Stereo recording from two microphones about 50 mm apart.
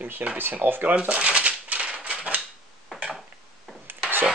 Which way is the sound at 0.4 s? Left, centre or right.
Right.